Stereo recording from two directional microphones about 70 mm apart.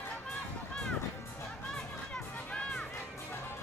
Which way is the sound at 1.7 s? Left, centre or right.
Centre.